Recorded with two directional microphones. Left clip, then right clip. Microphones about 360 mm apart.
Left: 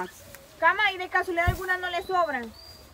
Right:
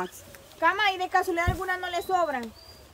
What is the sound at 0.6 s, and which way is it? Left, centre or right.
Speech, right.